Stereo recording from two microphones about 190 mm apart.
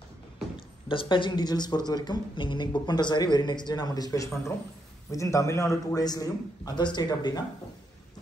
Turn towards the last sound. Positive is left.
turn(degrees=20)  # may be behind; listen again after turning